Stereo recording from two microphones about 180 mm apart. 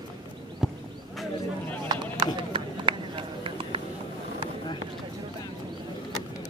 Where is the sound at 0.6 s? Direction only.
Centre (ahead or behind).